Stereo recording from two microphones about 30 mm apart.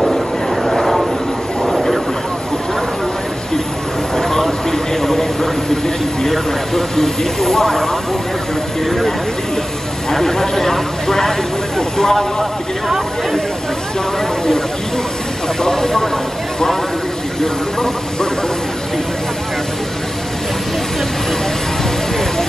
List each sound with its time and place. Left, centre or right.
0.0 s vehicle: centre
4.2 s a sound: centre
6.2 s speech: centre
10.1 s speech: centre
15.6 s speech: centre
17.4 s speech: left